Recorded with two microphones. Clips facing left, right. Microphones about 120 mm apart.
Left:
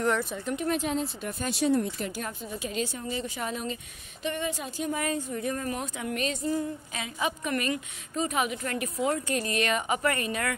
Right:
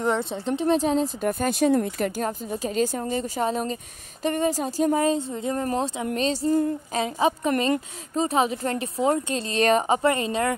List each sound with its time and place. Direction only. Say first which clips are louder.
0.0 s speech: right 3 dB; 20° right (ahead or behind)
1.2 s a woman's voice: right 6 dB; 50° right (ahead or behind)
2.2 s a woman's voice: right 7 dB; 40° right (ahead or behind)